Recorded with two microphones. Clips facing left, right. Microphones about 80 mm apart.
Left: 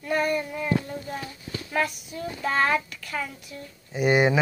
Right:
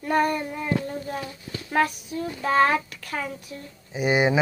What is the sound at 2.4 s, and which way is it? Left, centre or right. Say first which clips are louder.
Speech: right 3 dB; right.